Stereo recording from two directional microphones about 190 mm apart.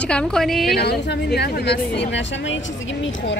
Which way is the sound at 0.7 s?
60° left (ahead or behind).